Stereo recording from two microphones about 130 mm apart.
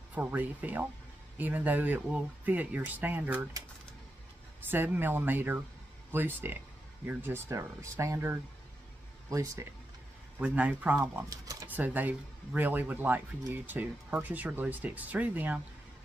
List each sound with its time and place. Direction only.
0.1 s speech: 15° right (ahead or behind)
4.6 s speech: 15° right (ahead or behind)
10.4 s speech: 10° right (ahead or behind)
11.2 s a sound: 25° right (ahead or behind)
11.7 s speech: 15° right (ahead or behind)